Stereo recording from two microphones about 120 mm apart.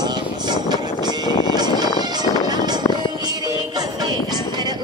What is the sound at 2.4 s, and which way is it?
Music, 35° right (ahead or behind).